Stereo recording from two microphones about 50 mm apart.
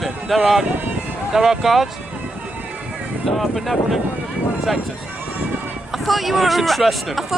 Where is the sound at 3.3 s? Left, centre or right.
Centre.